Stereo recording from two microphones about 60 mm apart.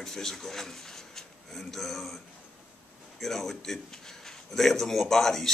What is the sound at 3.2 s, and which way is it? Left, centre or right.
Speech, centre.